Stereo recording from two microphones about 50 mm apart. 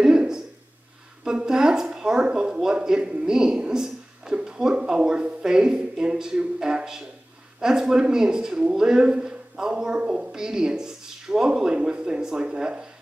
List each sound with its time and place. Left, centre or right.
1.2 s speech: centre